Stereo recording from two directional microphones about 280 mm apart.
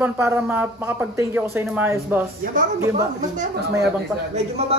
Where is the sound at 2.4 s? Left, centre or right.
Right.